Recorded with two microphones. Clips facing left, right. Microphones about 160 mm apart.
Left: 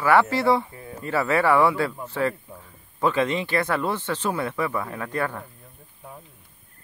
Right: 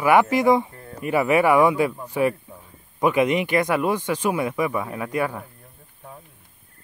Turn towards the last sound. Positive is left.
turn(degrees=-10)  # may be behind; listen again after turning